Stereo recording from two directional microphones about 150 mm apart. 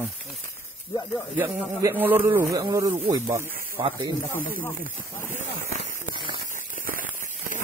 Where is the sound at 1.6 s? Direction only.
15° right (ahead or behind).